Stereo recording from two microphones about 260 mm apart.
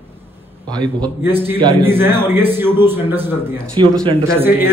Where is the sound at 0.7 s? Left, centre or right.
Centre.